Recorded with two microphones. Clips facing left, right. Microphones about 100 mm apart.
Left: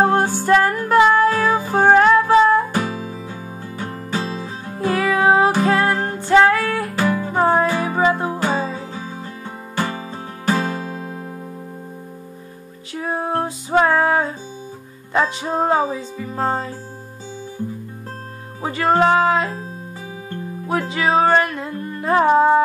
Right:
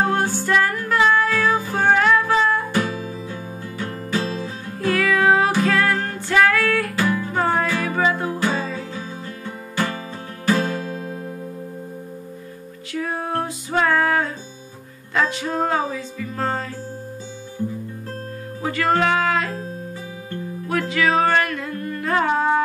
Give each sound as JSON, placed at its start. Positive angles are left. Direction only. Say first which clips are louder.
{"t": 0.0, "sound": "music", "louder": "left 4 dB", "side_deg": 35}
{"t": 12.9, "sound": "music", "louder": "left 2 dB", "side_deg": 25}
{"t": 18.6, "sound": "music", "louder": "left 3 dB", "side_deg": 25}
{"t": 20.6, "sound": "music", "louder": "left 1 dB", "side_deg": 25}